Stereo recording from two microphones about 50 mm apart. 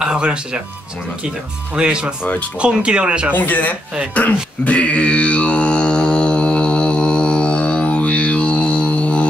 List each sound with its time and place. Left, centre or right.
0.0 s music: centre
1.8 s speech: centre
3.3 s speech: left
4.1 s mantra: left